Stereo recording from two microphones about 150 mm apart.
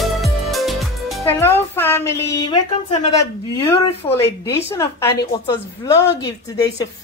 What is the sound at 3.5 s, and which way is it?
A woman's voice, 20° left (ahead or behind).